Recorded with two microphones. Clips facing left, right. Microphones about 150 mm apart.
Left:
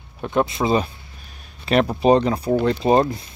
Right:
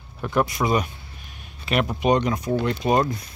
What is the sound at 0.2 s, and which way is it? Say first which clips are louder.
Speech: left 2 dB; 25° left (ahead or behind).